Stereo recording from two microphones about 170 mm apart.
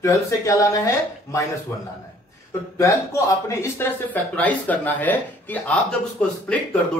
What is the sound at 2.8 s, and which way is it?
Speech, 20° left (ahead or behind).